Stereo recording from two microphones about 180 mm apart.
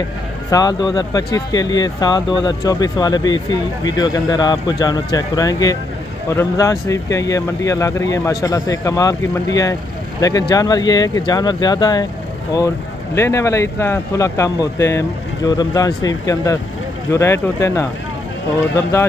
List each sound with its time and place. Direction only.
0.5 s speech: 20° left (ahead or behind)
10.5 s speech: 20° left (ahead or behind)